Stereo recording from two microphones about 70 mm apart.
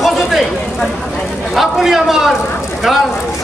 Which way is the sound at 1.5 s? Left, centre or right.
Centre.